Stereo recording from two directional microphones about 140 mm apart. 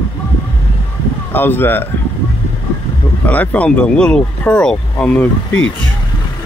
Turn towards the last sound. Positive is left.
turn(degrees=10)  # may be behind; listen again after turning